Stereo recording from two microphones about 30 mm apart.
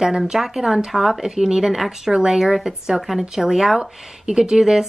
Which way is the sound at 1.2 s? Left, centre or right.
Centre.